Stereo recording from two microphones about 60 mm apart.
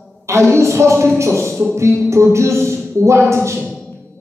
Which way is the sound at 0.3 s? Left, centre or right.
Right.